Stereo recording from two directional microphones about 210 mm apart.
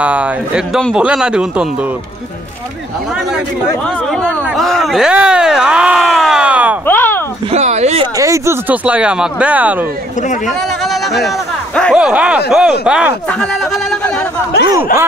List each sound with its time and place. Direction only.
0.0 s speech: 5° right (ahead or behind)
4.3 s speech: centre (ahead or behind)
6.9 s a sound: 10° left (ahead or behind)
7.5 s speech: 30° right (ahead or behind)
8.2 s speech: 15° right (ahead or behind); by 14.2 s centre (ahead or behind)